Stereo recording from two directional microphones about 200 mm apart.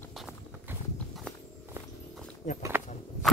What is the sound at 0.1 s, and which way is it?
Clip-clop, centre (ahead or behind).